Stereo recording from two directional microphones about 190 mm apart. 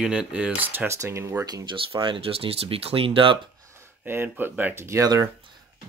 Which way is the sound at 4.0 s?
10° right (ahead or behind).